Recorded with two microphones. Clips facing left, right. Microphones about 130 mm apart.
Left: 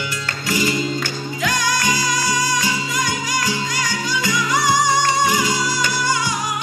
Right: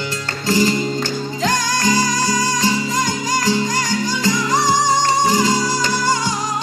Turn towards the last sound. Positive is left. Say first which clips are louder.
# right 3 dB
turn(degrees=-35)  # may be behind; listen again after turning